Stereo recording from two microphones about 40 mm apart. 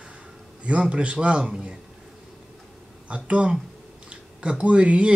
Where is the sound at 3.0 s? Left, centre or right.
Right.